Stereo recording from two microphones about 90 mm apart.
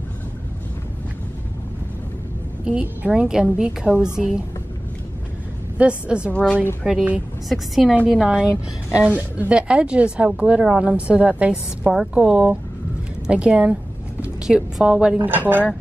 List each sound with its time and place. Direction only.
2.6 s speech: 15° right (ahead or behind)
5.8 s a woman's voice: 10° right (ahead or behind)
15.1 s speech: 20° right (ahead or behind)